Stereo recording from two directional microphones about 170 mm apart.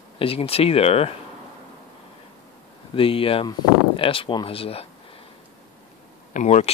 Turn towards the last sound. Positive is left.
turn(degrees=40)  # may be behind; listen again after turning